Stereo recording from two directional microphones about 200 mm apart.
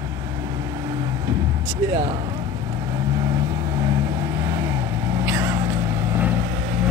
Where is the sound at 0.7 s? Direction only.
20° right (ahead or behind).